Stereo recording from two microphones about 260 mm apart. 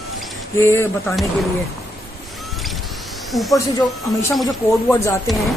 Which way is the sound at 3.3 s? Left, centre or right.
Centre.